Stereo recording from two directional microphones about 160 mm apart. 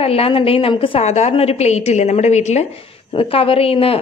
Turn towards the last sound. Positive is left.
turn(degrees=35)  # may be behind; listen again after turning